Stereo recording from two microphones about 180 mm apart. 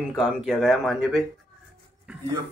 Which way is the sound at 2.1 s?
5° right (ahead or behind).